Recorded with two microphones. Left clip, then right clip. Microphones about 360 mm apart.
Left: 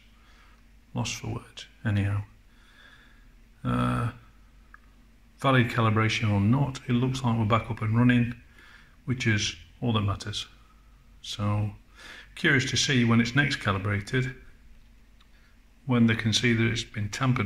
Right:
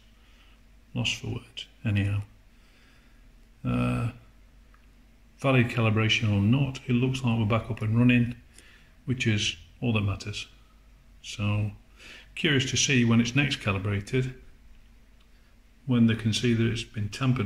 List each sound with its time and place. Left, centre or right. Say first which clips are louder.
0.9 s speech: right 3 dB; centre
3.6 s speech: left 2 dB; centre
5.4 s speech: left 1 dB; centre
15.9 s speech: left 2 dB; centre